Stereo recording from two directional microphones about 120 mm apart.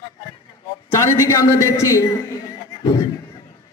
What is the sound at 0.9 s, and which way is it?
A man's voice, 25° left (ahead or behind).